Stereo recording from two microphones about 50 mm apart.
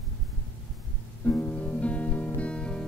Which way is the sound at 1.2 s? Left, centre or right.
Left.